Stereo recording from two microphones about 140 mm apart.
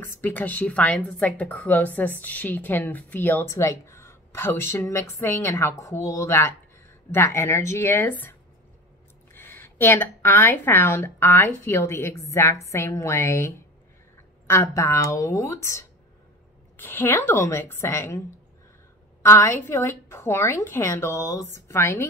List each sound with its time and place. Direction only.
0.0 s speech: 15° left (ahead or behind)
14.5 s a woman's voice: 20° left (ahead or behind)
19.2 s a woman's voice: 20° left (ahead or behind)